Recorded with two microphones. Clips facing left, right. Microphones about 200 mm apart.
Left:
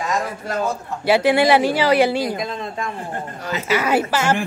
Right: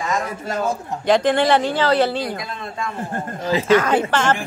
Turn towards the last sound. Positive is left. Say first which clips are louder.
# even
turn(degrees=10)  # may be behind; listen again after turning